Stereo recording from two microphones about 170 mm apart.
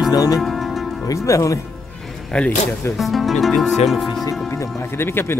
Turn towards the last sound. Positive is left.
turn(degrees=15)  # may be behind; listen again after turning